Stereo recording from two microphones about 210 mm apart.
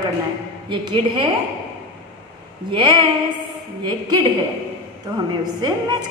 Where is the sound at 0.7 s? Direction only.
25° right (ahead or behind).